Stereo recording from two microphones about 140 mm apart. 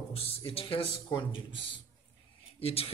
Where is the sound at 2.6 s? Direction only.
45° left (ahead or behind).